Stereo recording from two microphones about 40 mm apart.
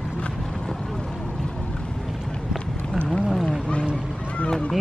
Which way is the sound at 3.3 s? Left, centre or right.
Centre.